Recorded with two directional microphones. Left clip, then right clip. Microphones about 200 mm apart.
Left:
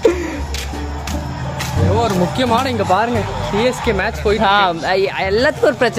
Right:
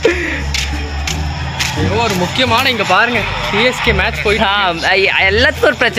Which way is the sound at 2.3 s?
45° left (ahead or behind).